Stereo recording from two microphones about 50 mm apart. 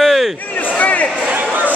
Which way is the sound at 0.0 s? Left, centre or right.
Centre.